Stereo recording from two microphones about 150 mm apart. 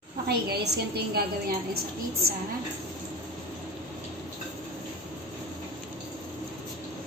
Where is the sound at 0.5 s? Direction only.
90° right.